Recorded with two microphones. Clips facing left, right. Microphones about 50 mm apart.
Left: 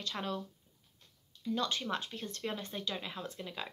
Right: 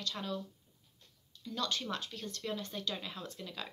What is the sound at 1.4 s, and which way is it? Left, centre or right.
Speech, left.